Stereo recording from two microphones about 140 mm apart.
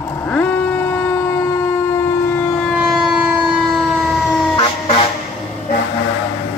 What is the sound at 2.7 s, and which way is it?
Siren, 10° right (ahead or behind).